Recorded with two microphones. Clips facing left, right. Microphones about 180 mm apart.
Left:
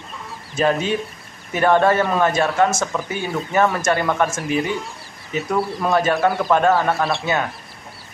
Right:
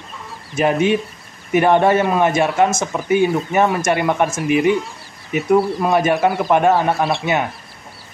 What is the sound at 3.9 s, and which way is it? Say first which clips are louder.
Speech: right 2 dB; 20° right (ahead or behind).